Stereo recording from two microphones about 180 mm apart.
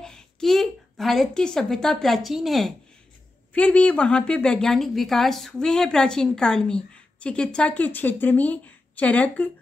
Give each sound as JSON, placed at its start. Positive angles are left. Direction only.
{"t": 0.0, "sound": "a woman's voice", "side_deg": 5}